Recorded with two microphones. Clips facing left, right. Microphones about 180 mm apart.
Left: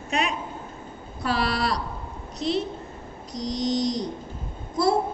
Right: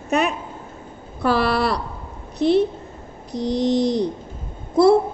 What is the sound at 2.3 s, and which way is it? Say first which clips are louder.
Speech: right 9 dB; 60° right (ahead or behind).